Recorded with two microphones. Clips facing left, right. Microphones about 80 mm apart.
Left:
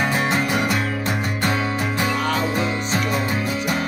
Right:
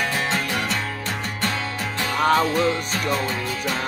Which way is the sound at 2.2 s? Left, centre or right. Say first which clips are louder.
Right 4 dB; right.